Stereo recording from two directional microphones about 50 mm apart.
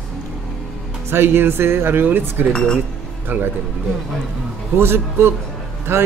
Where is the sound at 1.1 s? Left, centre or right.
Right.